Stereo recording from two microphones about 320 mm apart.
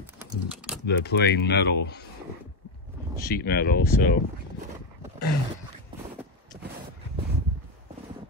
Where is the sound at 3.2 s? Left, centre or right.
Left.